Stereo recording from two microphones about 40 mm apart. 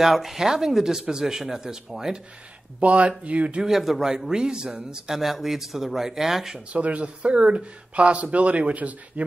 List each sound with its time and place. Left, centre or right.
0.0 s speech: centre
2.8 s speech: right
3.6 s speech: centre
4.3 s speech: centre
5.1 s speech: centre
6.7 s speech: right